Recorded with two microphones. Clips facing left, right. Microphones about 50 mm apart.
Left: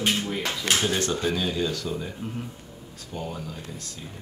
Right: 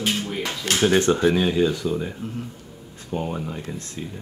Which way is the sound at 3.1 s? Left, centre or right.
Right.